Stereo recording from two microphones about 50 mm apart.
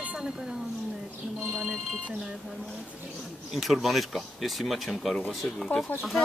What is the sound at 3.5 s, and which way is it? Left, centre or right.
Speech, centre.